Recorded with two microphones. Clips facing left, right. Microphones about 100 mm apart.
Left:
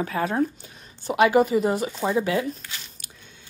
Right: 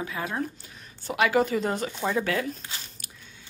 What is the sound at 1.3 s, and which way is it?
Speech, 15° left (ahead or behind).